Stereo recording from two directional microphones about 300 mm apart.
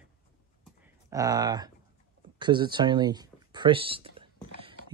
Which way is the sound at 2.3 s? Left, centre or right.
Centre.